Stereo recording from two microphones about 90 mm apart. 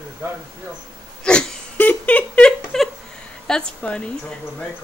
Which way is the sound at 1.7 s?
20° left (ahead or behind).